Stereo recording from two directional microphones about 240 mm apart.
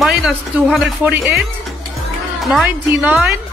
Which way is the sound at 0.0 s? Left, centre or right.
Centre.